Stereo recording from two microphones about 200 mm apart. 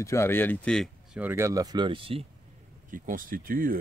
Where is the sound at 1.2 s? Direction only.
10° right (ahead or behind); by 2.3 s 25° right (ahead or behind).